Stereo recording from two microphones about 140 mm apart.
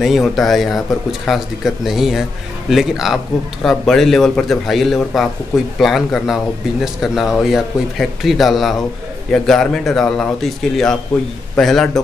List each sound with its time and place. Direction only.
0.0 s speech: centre (ahead or behind)